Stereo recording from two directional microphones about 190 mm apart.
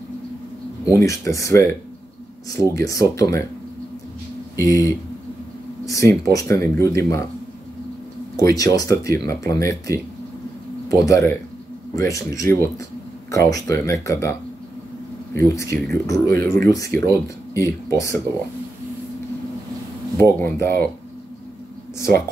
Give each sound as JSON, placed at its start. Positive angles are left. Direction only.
{"t": 0.8, "sound": "speech", "side_deg": 15}
{"t": 2.8, "sound": "speech", "side_deg": 15}
{"t": 4.6, "sound": "speech", "side_deg": 15}
{"t": 8.4, "sound": "speech", "side_deg": 20}
{"t": 15.3, "sound": "speech", "side_deg": 15}
{"t": 20.2, "sound": "speech", "side_deg": 15}
{"t": 21.9, "sound": "speech", "side_deg": 15}